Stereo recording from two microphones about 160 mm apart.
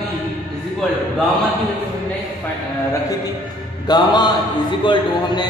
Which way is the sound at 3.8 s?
25° left (ahead or behind).